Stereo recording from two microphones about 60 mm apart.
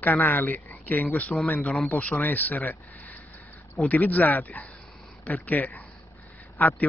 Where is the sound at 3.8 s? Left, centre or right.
Left.